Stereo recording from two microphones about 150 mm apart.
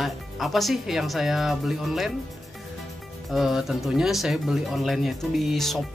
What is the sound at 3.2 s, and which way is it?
Speech, centre (ahead or behind).